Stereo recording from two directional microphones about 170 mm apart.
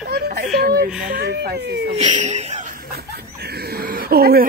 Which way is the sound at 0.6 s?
60° right (ahead or behind).